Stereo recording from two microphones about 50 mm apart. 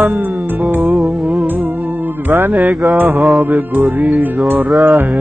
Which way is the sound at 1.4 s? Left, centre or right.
Right.